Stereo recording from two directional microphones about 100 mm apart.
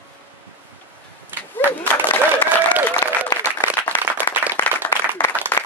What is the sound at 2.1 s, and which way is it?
Applause, 15° left (ahead or behind).